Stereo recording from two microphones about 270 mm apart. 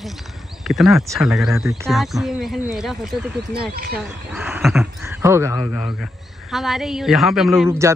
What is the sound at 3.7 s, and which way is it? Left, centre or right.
Speech, right.